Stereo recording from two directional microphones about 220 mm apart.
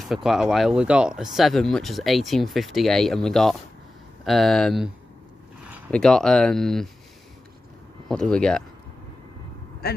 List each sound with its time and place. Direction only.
0.0 s speech: centre (ahead or behind)
5.9 s speech: 5° left (ahead or behind)
8.1 s speech: 5° left (ahead or behind)
9.8 s speech: 45° left (ahead or behind)